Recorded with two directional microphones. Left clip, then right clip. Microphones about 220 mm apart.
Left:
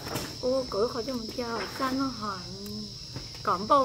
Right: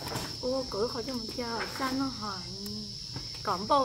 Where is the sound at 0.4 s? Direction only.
5° right (ahead or behind).